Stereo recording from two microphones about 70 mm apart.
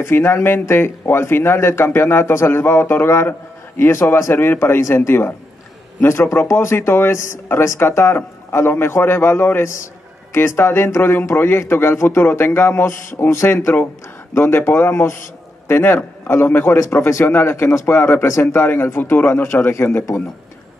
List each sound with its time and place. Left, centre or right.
0.0 s speech: left
17.8 s speech: left